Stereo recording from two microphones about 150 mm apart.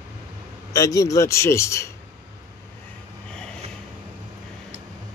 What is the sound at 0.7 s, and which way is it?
Speech, 20° left (ahead or behind).